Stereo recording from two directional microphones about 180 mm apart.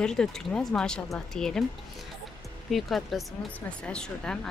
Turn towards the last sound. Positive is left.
turn(degrees=5)  # may be behind; listen again after turning